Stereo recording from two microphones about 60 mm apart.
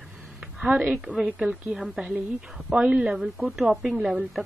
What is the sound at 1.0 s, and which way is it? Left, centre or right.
Speech, centre.